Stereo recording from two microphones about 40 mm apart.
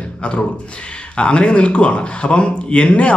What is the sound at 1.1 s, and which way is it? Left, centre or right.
Speech, left.